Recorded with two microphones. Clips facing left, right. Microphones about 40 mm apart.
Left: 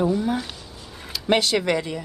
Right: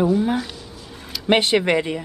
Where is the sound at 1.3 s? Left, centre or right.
Right.